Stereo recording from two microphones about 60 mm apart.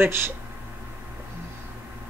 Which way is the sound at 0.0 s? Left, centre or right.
Right.